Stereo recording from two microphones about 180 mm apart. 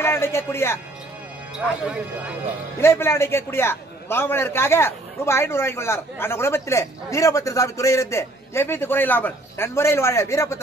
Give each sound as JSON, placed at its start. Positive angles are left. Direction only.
{"t": 0.0, "sound": "speech", "side_deg": 15}
{"t": 2.8, "sound": "a man's voice", "side_deg": 15}